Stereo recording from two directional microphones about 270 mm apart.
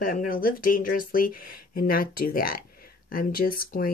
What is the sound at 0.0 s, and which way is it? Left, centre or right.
Speech, left.